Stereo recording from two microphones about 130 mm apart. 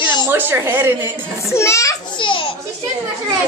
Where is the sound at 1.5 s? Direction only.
20° left (ahead or behind).